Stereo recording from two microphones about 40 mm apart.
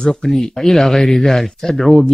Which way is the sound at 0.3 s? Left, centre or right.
Centre.